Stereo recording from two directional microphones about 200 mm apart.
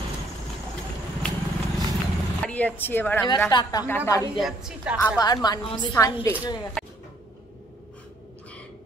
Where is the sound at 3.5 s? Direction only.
20° left (ahead or behind).